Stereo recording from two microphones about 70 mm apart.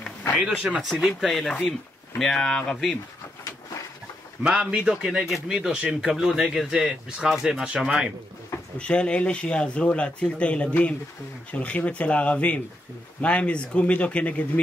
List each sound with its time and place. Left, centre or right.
0.4 s speech: right
0.7 s speech: centre
4.5 s speech: centre
8.7 s speech: centre